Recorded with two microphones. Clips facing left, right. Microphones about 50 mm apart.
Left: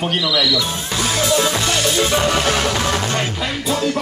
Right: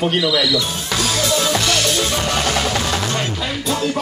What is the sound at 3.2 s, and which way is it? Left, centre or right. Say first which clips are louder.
Speech: left 1 dB; centre.